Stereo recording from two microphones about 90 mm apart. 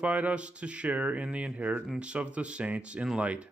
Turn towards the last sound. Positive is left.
turn(degrees=-15)  # may be behind; listen again after turning